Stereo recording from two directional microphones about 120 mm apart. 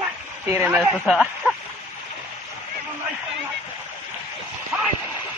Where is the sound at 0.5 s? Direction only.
15° right (ahead or behind).